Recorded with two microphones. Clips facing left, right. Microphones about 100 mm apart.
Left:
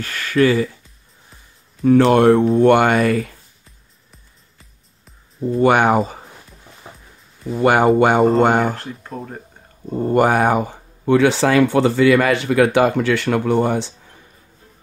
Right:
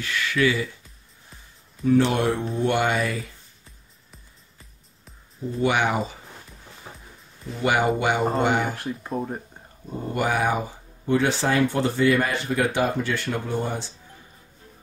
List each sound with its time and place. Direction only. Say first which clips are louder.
0.0 s speech: left 6 dB; 45° left (ahead or behind)
1.9 s speech: left 9 dB; 55° left (ahead or behind)
5.6 s speech: left 8 dB; 50° left (ahead or behind)
7.5 s speech: left 8 dB; 50° left (ahead or behind)
9.0 s speech: right 2 dB; 15° right (ahead or behind)
10.0 s speech: left 9 dB; 50° left (ahead or behind); by 13.9 s 75° left (ahead or behind)